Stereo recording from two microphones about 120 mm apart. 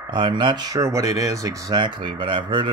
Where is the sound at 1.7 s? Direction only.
40° right (ahead or behind).